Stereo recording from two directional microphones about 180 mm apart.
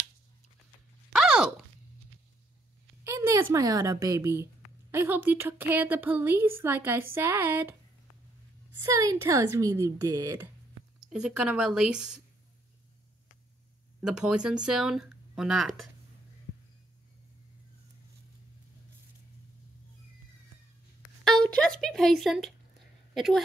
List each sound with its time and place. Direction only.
1.1 s a sound: 5° right (ahead or behind)
3.0 s a woman's voice: 15° right (ahead or behind)
8.9 s speech: 20° right (ahead or behind)
11.1 s speech: 5° right (ahead or behind)
14.0 s speech: 5° right (ahead or behind)
21.2 s a sound: 5° left (ahead or behind)
23.1 s a woman's voice: centre (ahead or behind)